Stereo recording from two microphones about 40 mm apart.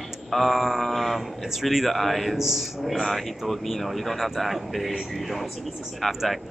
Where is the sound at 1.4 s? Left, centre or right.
Centre.